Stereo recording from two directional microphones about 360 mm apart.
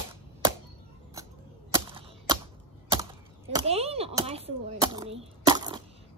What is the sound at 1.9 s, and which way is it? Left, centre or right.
Cap gun, centre.